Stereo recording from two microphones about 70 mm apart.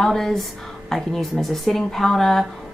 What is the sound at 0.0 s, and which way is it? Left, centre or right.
Speech, centre.